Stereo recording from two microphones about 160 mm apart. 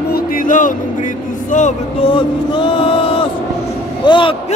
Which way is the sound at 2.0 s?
30° left (ahead or behind).